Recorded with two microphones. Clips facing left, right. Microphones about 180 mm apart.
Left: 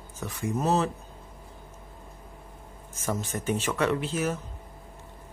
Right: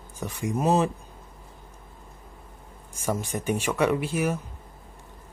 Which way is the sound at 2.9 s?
15° right (ahead or behind).